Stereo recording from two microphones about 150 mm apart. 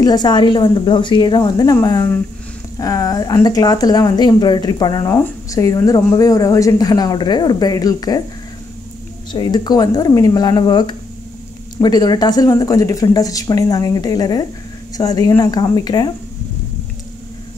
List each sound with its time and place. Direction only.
0.0 s speech: 25° left (ahead or behind)
5.0 s speech: 15° left (ahead or behind)
9.3 s speech: 30° left (ahead or behind)